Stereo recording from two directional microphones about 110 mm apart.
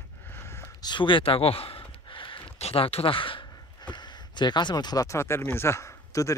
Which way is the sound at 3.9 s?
40° left (ahead or behind).